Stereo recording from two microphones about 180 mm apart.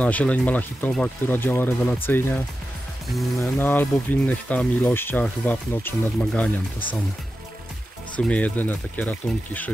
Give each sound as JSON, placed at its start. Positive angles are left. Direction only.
{"t": 0.0, "sound": "speech", "side_deg": 10}
{"t": 8.2, "sound": "speech", "side_deg": 5}